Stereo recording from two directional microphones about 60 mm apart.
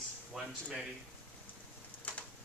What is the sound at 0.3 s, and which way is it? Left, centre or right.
Speech, centre.